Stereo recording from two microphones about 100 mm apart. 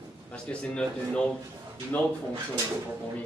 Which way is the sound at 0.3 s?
10° left (ahead or behind).